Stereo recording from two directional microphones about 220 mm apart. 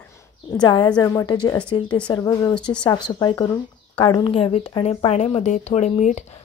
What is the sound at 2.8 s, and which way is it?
Speech, 20° left (ahead or behind).